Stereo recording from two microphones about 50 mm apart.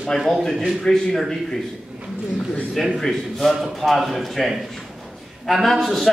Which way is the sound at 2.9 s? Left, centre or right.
Centre.